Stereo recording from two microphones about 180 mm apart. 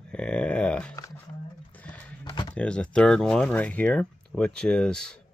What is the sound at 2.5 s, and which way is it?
Speech, 5° left (ahead or behind).